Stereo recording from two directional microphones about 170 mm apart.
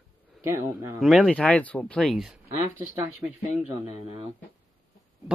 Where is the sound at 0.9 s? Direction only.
Centre (ahead or behind).